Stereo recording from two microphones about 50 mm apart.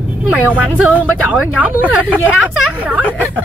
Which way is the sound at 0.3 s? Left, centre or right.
Right.